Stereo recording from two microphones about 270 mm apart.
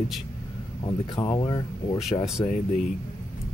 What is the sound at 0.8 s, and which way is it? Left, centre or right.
Speech, centre.